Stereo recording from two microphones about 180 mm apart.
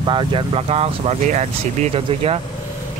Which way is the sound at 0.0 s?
25° right (ahead or behind).